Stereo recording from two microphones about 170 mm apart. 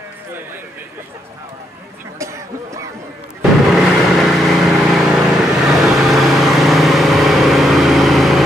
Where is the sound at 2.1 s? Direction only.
15° right (ahead or behind).